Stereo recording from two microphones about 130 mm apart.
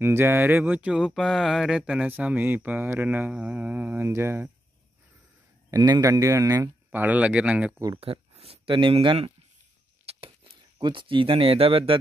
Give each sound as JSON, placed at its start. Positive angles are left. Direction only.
{"t": 0.0, "sound": "speech", "side_deg": -20}
{"t": 5.7, "sound": "speech", "side_deg": -30}
{"t": 6.9, "sound": "speech", "side_deg": -15}
{"t": 8.0, "sound": "speech", "side_deg": -50}
{"t": 10.1, "sound": "a sound", "side_deg": -50}
{"t": 10.8, "sound": "speech", "side_deg": -40}